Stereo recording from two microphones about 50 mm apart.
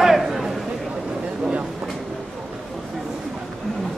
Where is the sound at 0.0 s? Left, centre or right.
Centre.